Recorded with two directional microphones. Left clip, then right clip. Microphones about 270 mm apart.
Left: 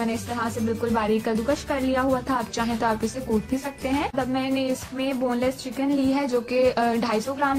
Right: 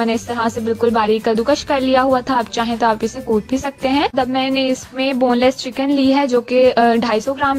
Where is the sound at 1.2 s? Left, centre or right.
Right.